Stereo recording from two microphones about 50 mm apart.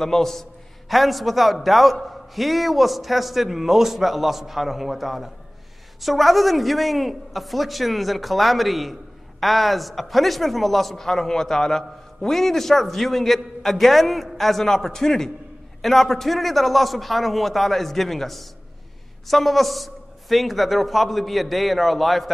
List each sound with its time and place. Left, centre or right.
0.0 s speech: centre